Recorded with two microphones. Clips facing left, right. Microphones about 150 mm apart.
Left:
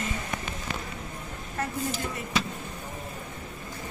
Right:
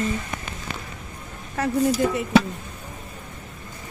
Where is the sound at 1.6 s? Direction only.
85° right.